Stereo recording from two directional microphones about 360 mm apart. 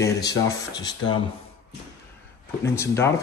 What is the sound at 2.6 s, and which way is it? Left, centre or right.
Speech, centre.